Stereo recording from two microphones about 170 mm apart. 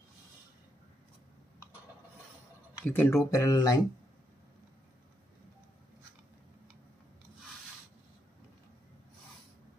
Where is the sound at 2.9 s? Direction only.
15° left (ahead or behind).